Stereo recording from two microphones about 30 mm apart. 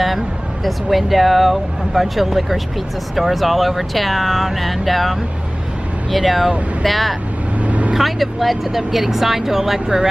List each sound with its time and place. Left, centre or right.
0.7 s speech: centre
6.1 s speech: centre
7.6 s vehicle: right
8.0 s speech: centre